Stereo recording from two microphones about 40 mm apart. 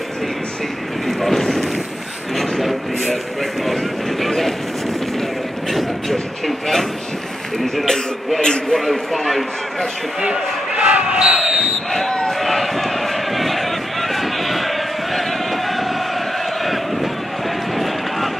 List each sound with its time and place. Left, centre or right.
1.0 s boat: centre
2.3 s a sound: centre
3.6 s vehicle: centre
5.7 s a sound: centre
8.7 s a sound: centre
10.2 s crowd: right
11.1 s basketball bounce: centre
11.4 s basketball bounce: centre
11.9 s basketball bounce: centre
12.3 s run: centre
15.1 s chant: centre
16.6 s crowd: centre